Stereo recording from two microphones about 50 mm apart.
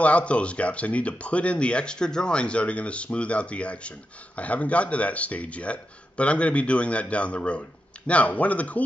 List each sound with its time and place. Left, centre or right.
0.0 s speech: left